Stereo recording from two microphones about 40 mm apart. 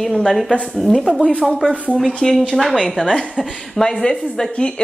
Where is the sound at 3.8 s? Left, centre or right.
Centre.